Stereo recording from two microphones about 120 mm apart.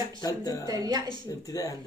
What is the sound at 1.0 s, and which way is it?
Speech, 30° left (ahead or behind).